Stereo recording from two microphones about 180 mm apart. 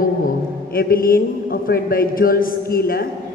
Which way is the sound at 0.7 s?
55° left (ahead or behind).